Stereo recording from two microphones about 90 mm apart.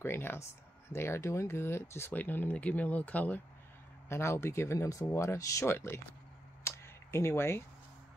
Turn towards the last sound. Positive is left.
turn(degrees=25)  # may be behind; listen again after turning